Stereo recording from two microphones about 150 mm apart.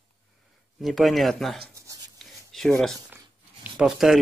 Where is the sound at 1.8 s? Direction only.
20° right (ahead or behind).